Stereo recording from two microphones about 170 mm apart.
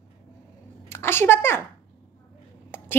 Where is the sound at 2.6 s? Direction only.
15° left (ahead or behind).